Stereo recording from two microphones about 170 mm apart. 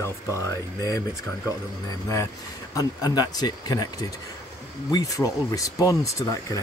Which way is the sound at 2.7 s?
20° left (ahead or behind).